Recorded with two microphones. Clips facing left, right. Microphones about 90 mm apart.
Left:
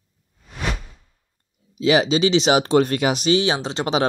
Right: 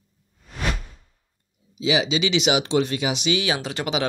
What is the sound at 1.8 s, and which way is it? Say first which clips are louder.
Speech: left 5 dB; 45° left (ahead or behind).